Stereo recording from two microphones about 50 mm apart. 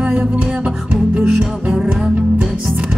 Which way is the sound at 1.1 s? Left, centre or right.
Right.